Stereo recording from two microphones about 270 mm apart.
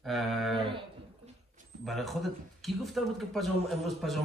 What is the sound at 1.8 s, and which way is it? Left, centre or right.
A man's voice, centre.